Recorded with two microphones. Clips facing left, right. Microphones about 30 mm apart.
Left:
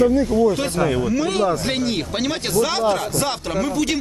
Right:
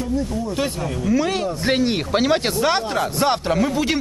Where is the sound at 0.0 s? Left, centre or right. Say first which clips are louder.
Left 8 dB; left.